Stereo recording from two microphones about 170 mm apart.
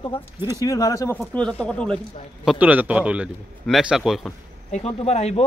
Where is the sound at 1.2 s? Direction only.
5° left (ahead or behind).